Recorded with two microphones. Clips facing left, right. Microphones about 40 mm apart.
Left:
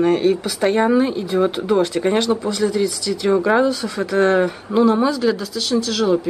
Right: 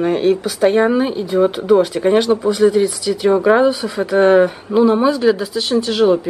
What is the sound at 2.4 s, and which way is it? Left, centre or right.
Speech, centre.